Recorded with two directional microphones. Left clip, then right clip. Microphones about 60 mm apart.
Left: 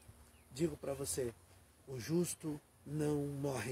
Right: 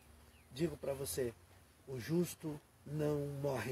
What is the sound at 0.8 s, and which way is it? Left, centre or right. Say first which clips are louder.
Speech: right 1 dB; centre.